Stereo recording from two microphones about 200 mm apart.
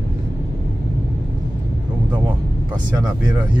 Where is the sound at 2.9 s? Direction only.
20° right (ahead or behind).